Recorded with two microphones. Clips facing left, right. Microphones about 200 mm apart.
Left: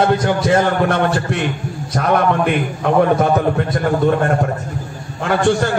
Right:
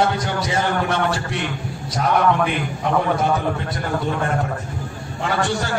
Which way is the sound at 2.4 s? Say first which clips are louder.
Left 5 dB; 55° left (ahead or behind).